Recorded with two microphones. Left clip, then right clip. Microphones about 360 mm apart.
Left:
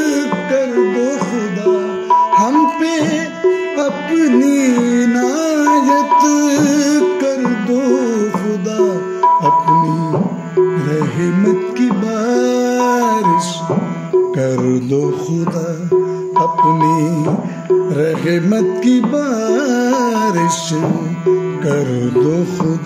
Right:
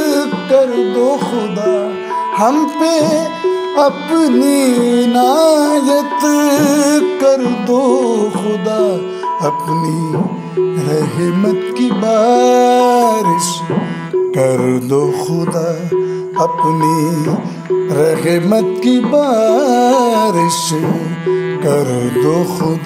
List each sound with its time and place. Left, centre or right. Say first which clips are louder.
0.0 s music: right 1 dB; centre
2.3 s music: left 1 dB; centre
5.6 s music: left 1 dB; right
5.9 s music: left 2 dB; centre
10.9 s music: right 2 dB; centre
13.0 s music: right 2 dB; right
16.8 s music: even; centre
18.6 s music: right 1 dB; centre
21.6 s music: right 6 dB; centre